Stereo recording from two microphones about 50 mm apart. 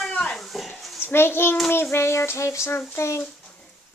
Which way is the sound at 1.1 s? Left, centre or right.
Left.